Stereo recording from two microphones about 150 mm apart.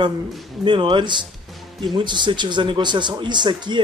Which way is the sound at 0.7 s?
30° right (ahead or behind).